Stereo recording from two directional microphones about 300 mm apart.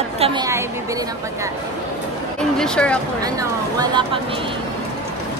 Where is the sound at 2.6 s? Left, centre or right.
Centre.